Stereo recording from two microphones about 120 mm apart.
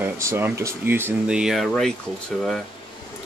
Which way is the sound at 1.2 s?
5° right (ahead or behind).